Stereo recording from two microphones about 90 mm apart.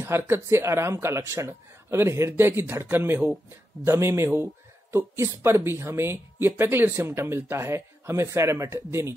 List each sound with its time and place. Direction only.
0.0 s speech: 30° right (ahead or behind)